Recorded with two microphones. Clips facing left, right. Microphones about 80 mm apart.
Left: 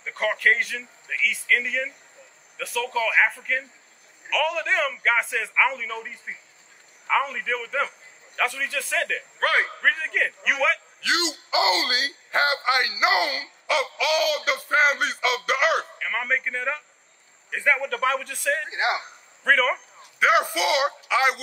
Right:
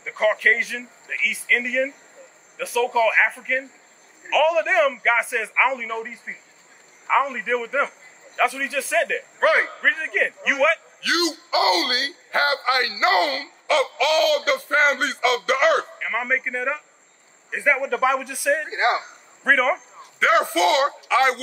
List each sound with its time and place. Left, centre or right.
0.0 s a man's voice: centre
11.0 s a man's voice: left; by 15.9 s centre
16.0 s a man's voice: centre
18.7 s speech: right
19.4 s a man's voice: centre
20.2 s a man's voice: centre